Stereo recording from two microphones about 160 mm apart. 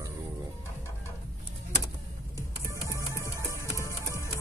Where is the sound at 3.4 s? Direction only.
20° right (ahead or behind).